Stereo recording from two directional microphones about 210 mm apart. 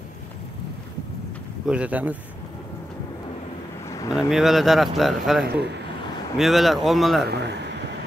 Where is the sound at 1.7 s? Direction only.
5° right (ahead or behind).